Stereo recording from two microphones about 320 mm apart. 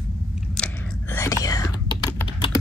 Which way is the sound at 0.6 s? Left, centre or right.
Centre.